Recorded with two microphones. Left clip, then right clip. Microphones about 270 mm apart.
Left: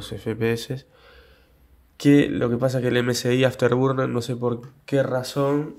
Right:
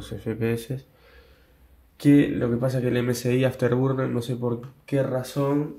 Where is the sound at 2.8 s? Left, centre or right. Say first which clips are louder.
Left 3 dB; left.